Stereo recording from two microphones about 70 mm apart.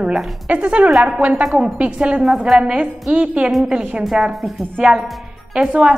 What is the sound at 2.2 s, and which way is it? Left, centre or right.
A woman's voice, centre.